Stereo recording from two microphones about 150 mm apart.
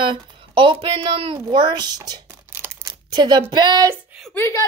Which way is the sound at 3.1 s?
30° right (ahead or behind).